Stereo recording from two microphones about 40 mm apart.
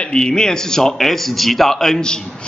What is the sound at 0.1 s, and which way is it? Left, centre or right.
Speech, centre.